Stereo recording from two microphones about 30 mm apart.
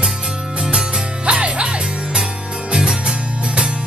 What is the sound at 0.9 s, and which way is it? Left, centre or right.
Music, right.